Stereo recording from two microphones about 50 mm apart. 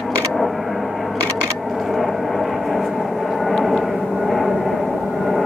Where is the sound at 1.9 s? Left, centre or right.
Centre.